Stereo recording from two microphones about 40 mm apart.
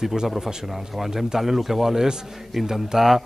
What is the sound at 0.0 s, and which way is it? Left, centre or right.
Speech, centre.